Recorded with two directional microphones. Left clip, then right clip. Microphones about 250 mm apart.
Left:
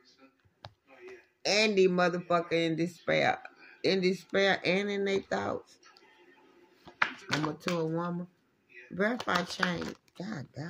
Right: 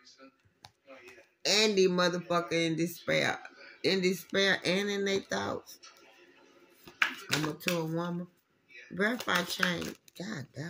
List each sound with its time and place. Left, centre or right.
1.4 s speech: centre
7.5 s speech: centre